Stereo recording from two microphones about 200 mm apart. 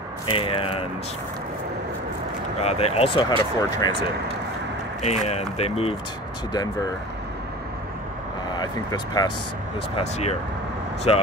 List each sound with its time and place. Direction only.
0.3 s speech: 25° left (ahead or behind)
2.6 s speech: 30° left (ahead or behind)
5.0 s speech: 35° left (ahead or behind)
8.5 s speech: 20° left (ahead or behind)
9.9 s speech: 30° left (ahead or behind)